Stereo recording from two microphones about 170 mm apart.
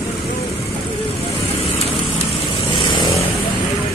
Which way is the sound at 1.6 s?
35° left (ahead or behind).